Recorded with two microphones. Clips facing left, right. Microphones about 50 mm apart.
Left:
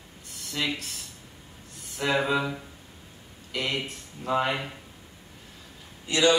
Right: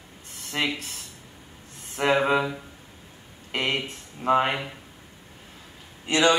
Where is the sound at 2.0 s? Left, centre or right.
Right.